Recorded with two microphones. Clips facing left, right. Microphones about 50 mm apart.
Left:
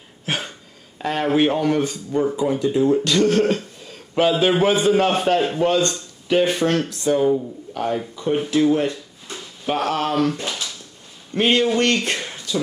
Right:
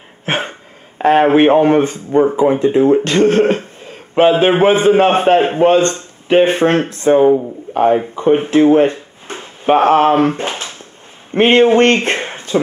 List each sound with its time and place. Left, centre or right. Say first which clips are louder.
0.2 s speech: right 7 dB; right